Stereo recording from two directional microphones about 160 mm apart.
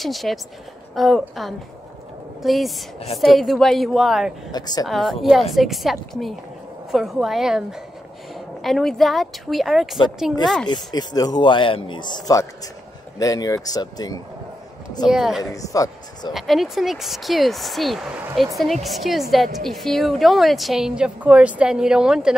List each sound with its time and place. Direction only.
0.0 s speech: centre (ahead or behind)
4.5 s a man's voice: 25° left (ahead or behind)
4.8 s speech: centre (ahead or behind)
8.6 s speech: centre (ahead or behind)
10.7 s a man's voice: 25° left (ahead or behind)
15.0 s speech: 5° right (ahead or behind)
15.5 s speech: 20° left (ahead or behind)
16.3 s speech: centre (ahead or behind)